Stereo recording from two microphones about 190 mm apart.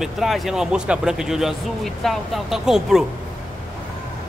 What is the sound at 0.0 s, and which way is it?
Speech, centre (ahead or behind).